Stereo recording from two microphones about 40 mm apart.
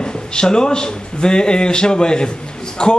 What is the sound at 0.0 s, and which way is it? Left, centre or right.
A man's voice, centre.